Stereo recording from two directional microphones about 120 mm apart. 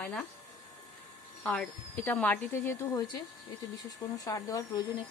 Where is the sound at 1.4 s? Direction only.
10° left (ahead or behind).